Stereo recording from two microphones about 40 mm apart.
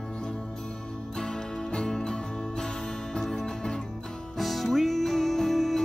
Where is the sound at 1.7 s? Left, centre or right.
Centre.